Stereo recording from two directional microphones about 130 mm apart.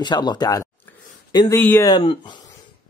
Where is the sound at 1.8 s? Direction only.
35° left (ahead or behind).